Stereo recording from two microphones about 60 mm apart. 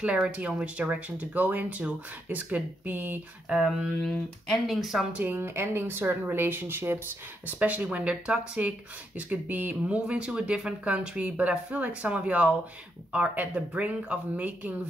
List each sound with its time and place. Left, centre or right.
0.0 s speech: centre
3.4 s speech: centre
4.0 s speech: centre
5.1 s speech: right
5.4 s speech: right
7.4 s speech: right